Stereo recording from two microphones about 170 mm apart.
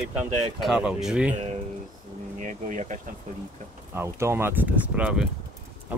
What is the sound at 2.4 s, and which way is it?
Speech, 50° right (ahead or behind).